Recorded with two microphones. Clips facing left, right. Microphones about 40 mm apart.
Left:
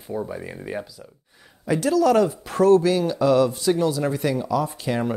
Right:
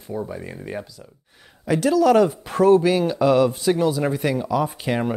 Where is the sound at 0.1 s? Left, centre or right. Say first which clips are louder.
Even; centre.